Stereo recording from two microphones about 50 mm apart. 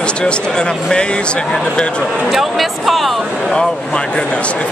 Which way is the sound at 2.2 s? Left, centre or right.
Centre.